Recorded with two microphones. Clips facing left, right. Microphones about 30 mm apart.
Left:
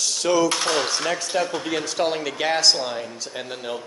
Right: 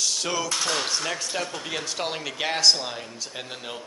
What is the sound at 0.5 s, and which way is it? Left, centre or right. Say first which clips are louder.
Speech: left 4 dB; left.